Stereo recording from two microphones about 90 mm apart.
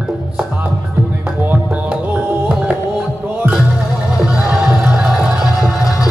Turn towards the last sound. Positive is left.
turn(degrees=-5)  # may be behind; listen again after turning